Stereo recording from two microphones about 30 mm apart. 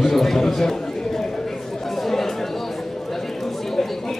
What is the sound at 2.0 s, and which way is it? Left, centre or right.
Chatter, centre.